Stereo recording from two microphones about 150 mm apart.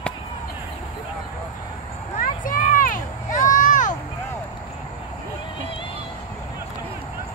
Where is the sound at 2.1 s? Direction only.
65° left (ahead or behind).